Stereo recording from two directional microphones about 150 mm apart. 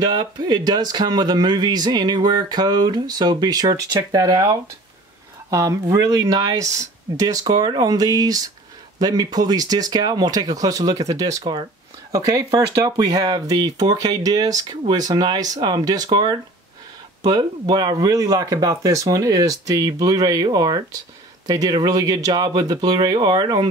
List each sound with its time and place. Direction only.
0.0 s speech: 25° right (ahead or behind)